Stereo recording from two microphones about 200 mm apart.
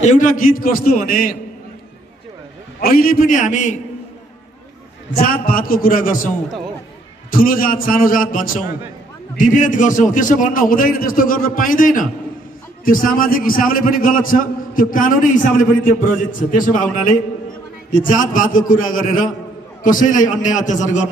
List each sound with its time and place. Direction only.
0.0 s a man's voice: 40° left (ahead or behind)
2.8 s a man's voice: 50° left (ahead or behind)
5.1 s a man's voice: 50° left (ahead or behind)